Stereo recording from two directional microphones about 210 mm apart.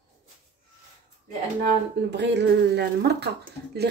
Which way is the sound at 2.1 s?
55° right (ahead or behind).